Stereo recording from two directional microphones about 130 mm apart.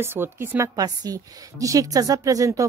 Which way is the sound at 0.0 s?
15° right (ahead or behind).